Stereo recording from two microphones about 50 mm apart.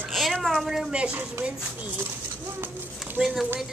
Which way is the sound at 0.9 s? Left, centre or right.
Right.